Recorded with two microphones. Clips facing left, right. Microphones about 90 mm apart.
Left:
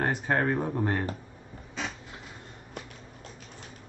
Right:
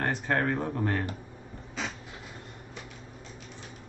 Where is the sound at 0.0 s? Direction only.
15° left (ahead or behind).